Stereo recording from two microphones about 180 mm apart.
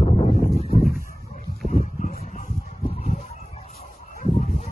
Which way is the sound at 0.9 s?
55° right (ahead or behind).